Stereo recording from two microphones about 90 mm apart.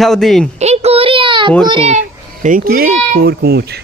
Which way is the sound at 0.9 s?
90° right.